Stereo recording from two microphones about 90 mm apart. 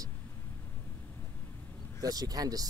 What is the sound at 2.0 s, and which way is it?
Speech, 45° right (ahead or behind).